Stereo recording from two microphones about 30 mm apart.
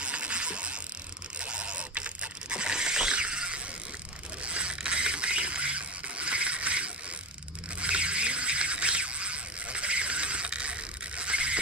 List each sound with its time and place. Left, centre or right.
0.0 s mechanisms: right
1.4 s camera: right
2.5 s ratchet: right
4.4 s mechanisms: right
7.8 s music: right